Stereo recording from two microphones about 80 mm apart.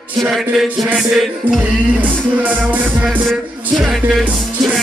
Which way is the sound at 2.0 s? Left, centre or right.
Centre.